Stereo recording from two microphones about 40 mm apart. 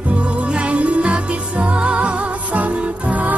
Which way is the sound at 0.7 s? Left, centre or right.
Right.